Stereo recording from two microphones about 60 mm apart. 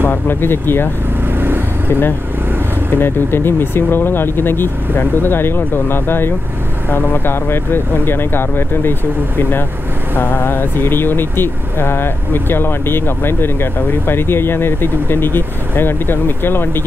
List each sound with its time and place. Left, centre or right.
0.0 s speech: left
1.4 s vehicle: right
3.0 s speech: left